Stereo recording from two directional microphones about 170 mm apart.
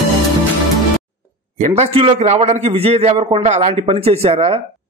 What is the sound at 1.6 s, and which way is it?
A man's voice, 40° right (ahead or behind).